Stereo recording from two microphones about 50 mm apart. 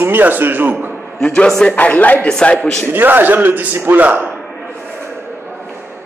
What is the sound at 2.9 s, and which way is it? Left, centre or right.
A man's voice, right.